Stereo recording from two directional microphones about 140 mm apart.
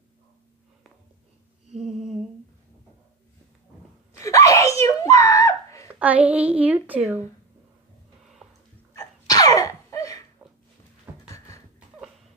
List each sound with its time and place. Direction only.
4.2 s screaming: 20° left (ahead or behind)
5.9 s a woman's voice: 10° right (ahead or behind)
8.9 s sneeze: 25° left (ahead or behind)
11.2 s a sound: 20° left (ahead or behind)